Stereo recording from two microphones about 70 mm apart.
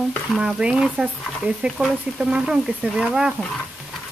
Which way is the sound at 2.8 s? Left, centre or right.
Centre.